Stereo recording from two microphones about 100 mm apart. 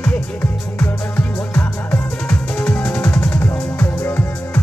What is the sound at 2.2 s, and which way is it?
Music, 10° left (ahead or behind).